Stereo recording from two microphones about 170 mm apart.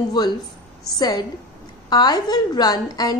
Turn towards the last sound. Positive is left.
turn(degrees=20)  # may be behind; listen again after turning